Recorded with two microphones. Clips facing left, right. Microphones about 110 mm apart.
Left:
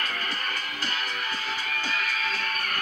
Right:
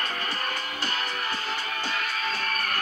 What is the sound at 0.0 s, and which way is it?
Music, 30° right (ahead or behind).